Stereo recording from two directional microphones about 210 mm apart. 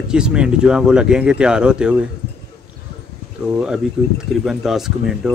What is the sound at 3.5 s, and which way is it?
Speech, 5° right (ahead or behind).